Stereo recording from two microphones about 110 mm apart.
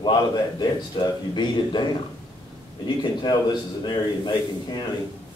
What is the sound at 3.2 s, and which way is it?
A man's voice, 45° left (ahead or behind).